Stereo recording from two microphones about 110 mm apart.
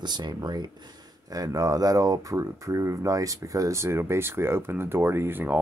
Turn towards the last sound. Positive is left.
turn(degrees=-20)  # may be behind; listen again after turning